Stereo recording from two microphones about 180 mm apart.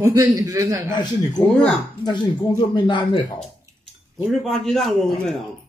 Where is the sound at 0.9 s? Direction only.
25° left (ahead or behind).